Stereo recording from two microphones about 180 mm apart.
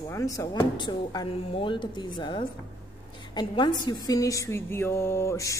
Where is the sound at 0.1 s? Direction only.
20° left (ahead or behind).